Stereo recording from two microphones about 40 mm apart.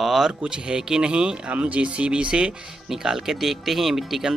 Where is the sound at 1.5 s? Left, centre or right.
Right.